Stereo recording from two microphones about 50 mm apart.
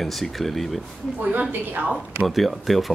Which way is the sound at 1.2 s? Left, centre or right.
Right.